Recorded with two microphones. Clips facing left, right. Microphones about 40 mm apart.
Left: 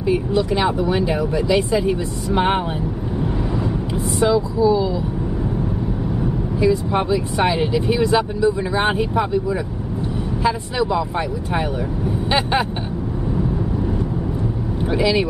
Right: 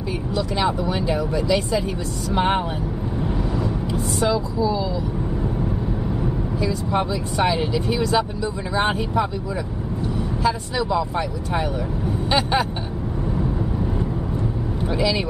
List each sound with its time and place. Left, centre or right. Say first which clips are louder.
0.1 s speech: left 7 dB; centre
3.9 s speech: left 4 dB; centre
6.6 s speech: left 5 dB; centre
15.0 s speech: left 4 dB; centre